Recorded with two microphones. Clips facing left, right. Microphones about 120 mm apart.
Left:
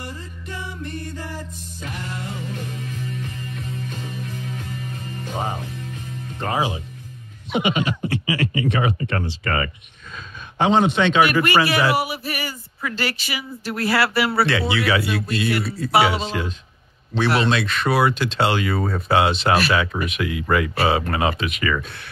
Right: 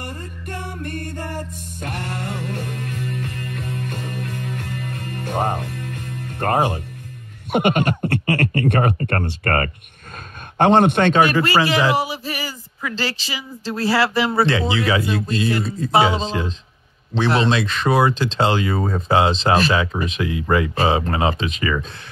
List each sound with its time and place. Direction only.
0.0 s music: 55° right (ahead or behind)
7.5 s speech: 55° right (ahead or behind)
11.3 s speech: 20° right (ahead or behind)
13.7 s speech: 20° right (ahead or behind)